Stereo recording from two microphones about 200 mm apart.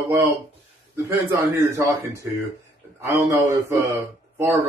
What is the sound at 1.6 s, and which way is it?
Speech, 15° right (ahead or behind).